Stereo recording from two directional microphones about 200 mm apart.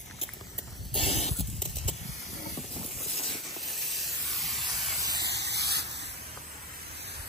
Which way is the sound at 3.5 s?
Centre (ahead or behind).